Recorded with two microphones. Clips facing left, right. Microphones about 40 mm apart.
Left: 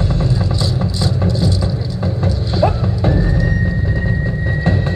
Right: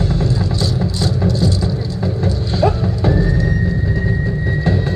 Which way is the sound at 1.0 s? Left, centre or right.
Left.